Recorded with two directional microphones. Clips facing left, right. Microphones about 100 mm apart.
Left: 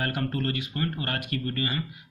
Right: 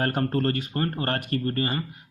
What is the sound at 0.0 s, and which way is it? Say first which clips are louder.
Speech: right 5 dB; 40° right (ahead or behind).